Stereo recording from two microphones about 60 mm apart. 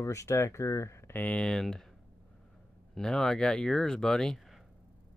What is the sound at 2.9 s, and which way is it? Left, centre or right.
Speech, centre.